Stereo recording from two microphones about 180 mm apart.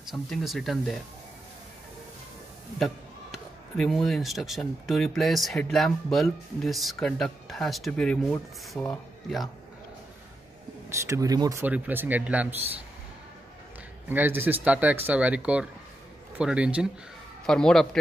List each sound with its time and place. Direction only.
0.1 s speech: centre (ahead or behind)
2.8 s speech: centre (ahead or behind)
10.9 s speech: 15° right (ahead or behind)
14.0 s speech: 10° right (ahead or behind)